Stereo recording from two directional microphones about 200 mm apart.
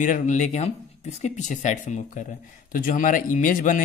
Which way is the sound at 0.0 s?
40° left (ahead or behind).